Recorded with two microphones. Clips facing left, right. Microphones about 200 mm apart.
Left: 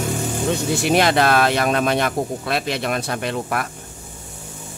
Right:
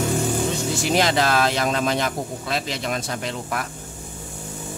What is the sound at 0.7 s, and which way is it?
Speech, 60° left (ahead or behind).